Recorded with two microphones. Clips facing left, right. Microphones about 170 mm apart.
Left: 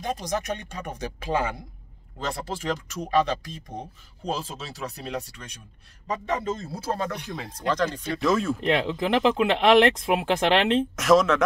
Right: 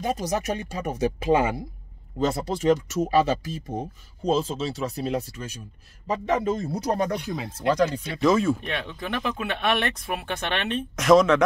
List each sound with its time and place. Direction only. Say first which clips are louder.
0.0 s speech: right 3 dB; 10° right (ahead or behind)
7.3 s speech: right 3 dB; 5° right (ahead or behind)
8.2 s speech: right 4 dB; centre (ahead or behind)
8.5 s speech: left 8 dB; 90° left
11.0 s speech: right 4 dB; centre (ahead or behind)